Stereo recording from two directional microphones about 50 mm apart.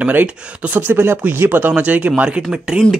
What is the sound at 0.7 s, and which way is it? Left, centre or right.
Speech, right.